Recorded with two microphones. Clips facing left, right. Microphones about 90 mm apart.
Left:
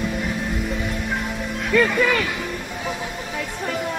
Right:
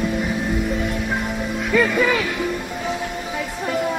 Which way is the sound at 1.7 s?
5° right (ahead or behind).